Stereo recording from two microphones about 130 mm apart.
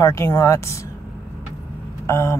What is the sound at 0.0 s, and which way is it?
Speech, 20° left (ahead or behind).